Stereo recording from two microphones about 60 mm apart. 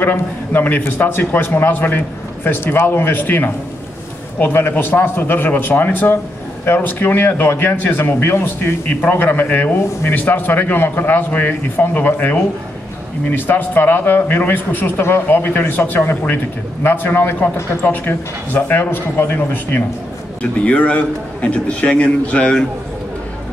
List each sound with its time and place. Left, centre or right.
0.0 s a man's voice: left
13.3 s a man's voice: left
20.6 s a man's voice: left